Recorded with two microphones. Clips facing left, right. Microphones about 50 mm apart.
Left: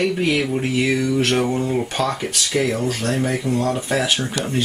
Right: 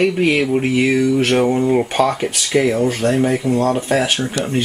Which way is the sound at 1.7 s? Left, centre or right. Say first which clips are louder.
Right 6 dB; right.